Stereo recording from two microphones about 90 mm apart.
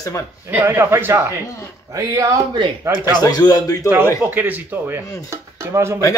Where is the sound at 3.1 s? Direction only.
50° left (ahead or behind).